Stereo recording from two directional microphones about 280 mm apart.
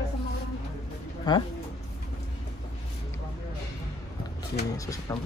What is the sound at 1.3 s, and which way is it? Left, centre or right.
Speech, centre.